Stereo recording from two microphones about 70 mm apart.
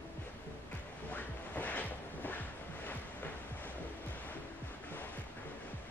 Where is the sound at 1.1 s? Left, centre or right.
Left.